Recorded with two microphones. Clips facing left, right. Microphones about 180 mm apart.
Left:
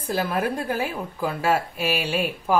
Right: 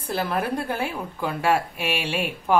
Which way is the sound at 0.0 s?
10° left (ahead or behind).